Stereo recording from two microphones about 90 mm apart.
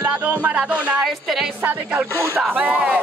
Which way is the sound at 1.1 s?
Centre (ahead or behind).